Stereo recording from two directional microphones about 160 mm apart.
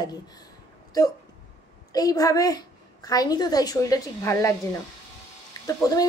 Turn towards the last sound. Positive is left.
turn(degrees=20)  # may be behind; listen again after turning